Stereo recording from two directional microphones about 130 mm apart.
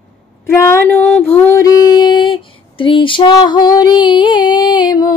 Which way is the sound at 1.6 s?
25° left (ahead or behind).